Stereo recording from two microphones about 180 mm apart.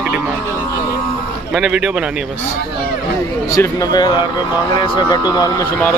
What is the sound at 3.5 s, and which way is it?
Speech, 20° left (ahead or behind).